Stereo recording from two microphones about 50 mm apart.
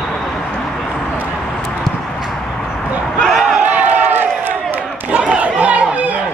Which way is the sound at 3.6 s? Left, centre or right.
Right.